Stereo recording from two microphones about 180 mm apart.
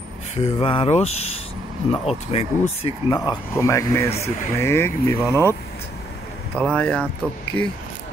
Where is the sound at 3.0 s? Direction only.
20° left (ahead or behind).